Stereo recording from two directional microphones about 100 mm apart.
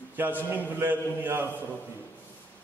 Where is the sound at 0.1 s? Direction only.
20° right (ahead or behind).